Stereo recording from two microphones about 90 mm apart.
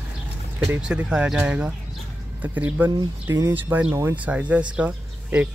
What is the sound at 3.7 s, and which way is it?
Speech, 20° right (ahead or behind).